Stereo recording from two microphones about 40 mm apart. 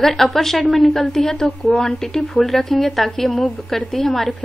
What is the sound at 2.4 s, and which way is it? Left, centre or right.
A woman's voice, centre.